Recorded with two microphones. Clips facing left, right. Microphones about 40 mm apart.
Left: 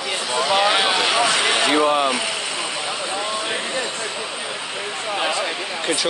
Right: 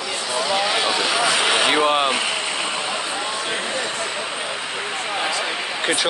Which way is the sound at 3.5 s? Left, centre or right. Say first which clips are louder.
Even; right.